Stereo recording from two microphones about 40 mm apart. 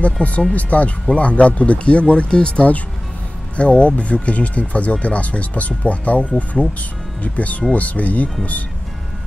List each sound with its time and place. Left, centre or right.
0.0 s speech: left